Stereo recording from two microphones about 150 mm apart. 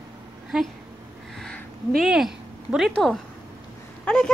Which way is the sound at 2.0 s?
Centre (ahead or behind).